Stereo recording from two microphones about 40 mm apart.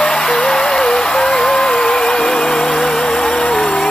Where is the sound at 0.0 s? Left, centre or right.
Centre.